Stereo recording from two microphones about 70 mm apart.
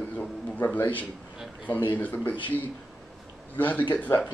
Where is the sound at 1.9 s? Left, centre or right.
Left.